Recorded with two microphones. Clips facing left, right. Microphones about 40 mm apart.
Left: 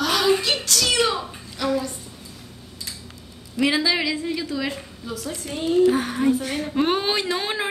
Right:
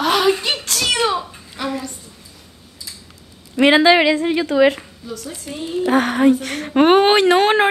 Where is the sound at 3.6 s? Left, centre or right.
Right.